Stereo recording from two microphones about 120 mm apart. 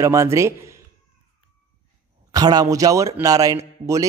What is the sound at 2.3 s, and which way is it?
A man's voice, 35° right (ahead or behind).